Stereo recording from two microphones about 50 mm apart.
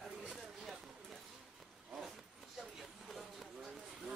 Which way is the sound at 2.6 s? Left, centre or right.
Centre.